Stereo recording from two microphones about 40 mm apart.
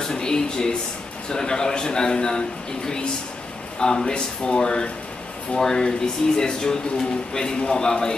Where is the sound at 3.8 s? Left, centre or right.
Centre.